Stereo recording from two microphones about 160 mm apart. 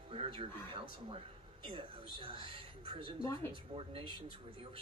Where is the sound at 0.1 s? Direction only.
35° right (ahead or behind).